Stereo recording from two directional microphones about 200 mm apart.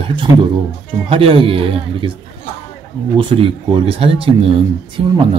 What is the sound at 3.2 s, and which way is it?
Speech, 25° right (ahead or behind).